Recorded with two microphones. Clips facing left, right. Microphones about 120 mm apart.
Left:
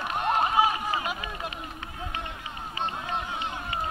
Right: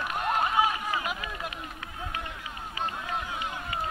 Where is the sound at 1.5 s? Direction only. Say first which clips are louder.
Left 1 dB; 5° right (ahead or behind).